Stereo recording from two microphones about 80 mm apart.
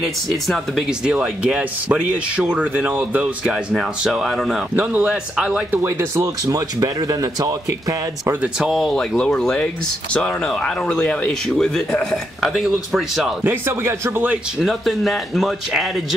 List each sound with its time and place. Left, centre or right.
0.0 s speech: centre
1.0 s speech: centre
3.7 s speech: centre
5.7 s speech: right
6.4 s speech: right
8.6 s speech: centre
13.4 s speech: right
14.6 s speech: centre